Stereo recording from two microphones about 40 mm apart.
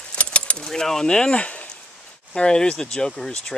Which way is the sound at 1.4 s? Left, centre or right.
Left.